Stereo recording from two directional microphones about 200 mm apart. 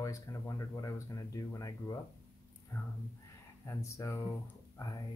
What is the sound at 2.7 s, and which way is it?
Speech, 10° left (ahead or behind).